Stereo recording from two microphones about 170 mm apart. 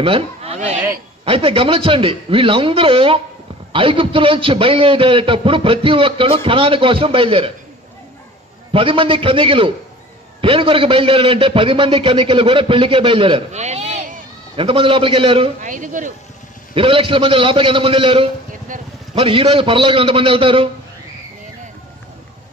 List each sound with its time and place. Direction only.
0.0 s a man's voice: 35° right (ahead or behind)
8.7 s a man's voice: 30° right (ahead or behind)
14.6 s a man's voice: 30° right (ahead or behind)
15.6 s speech: 50° right (ahead or behind)
16.7 s a man's voice: 30° right (ahead or behind)